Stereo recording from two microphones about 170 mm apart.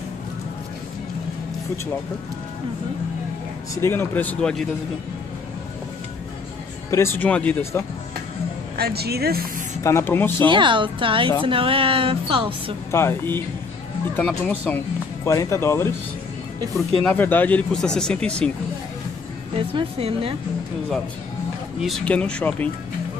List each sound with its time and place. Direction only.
3.7 s speech: 15° left (ahead or behind)
6.9 s speech: 15° left (ahead or behind)
8.7 s speech: 70° right (ahead or behind)
9.8 s speech: 15° left (ahead or behind)
10.4 s a woman's voice: 30° right (ahead or behind)
12.9 s speech: 15° left (ahead or behind)
16.9 s speech: 5° left (ahead or behind)
19.7 s a woman's voice: 35° right (ahead or behind)
21.8 s speech: 5° left (ahead or behind)